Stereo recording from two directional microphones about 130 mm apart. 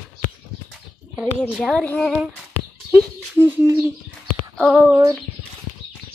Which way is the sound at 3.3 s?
15° right (ahead or behind).